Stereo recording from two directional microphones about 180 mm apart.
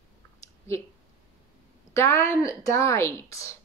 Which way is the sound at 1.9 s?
15° left (ahead or behind).